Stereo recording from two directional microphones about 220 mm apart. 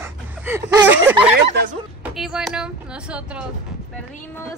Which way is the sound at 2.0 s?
Centre (ahead or behind).